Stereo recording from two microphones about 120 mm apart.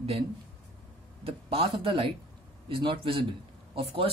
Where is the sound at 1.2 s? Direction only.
50° right (ahead or behind).